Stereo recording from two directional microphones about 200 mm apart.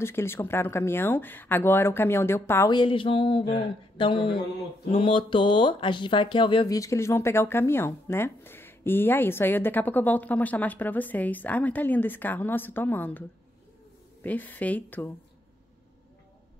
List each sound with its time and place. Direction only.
0.0 s speech: 10° left (ahead or behind)
4.0 s a sound: 25° left (ahead or behind)
4.9 s speech: 25° left (ahead or behind); by 13.2 s 10° left (ahead or behind)
14.2 s speech: 10° left (ahead or behind)